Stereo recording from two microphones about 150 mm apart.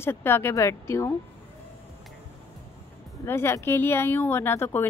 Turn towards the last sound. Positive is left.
turn(degrees=15)  # may be behind; listen again after turning